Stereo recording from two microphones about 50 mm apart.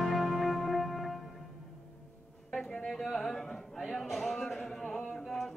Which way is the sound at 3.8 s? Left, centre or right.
Centre.